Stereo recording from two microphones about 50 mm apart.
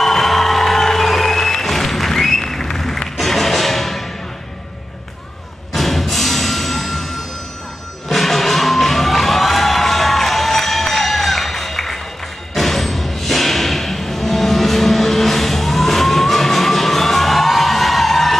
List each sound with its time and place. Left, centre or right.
0.0 s music: centre
5.7 s music: centre
8.1 s music: centre